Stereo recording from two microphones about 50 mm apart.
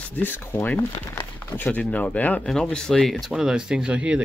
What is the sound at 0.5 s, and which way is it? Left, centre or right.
Speech, left.